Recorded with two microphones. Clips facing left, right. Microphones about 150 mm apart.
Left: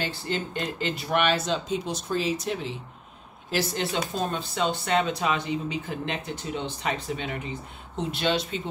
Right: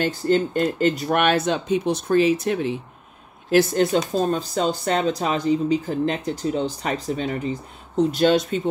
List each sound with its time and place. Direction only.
0.0 s speech: 45° right (ahead or behind)